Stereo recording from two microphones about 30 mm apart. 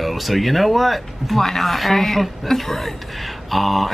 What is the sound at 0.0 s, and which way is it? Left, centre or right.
Speech, centre.